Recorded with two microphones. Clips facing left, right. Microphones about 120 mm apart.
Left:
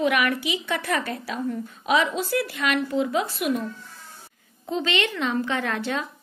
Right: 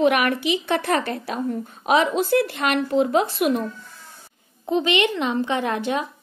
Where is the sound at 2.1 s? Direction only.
55° right (ahead or behind).